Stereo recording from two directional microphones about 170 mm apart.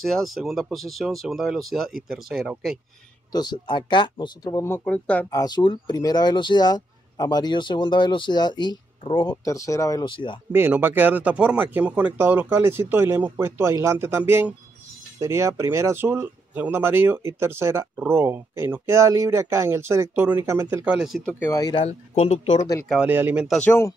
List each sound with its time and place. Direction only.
0.0 s speech: centre (ahead or behind)
3.3 s speech: 25° left (ahead or behind); by 5.3 s 10° left (ahead or behind)
5.3 s speech: 25° left (ahead or behind)
10.5 s speech: 10° right (ahead or behind)
21.3 s speech: 10° left (ahead or behind)
21.5 s speech: 25° left (ahead or behind)
21.8 s speech: 40° left (ahead or behind)
22.8 s speech: 10° right (ahead or behind)
23.6 s speech: 15° left (ahead or behind)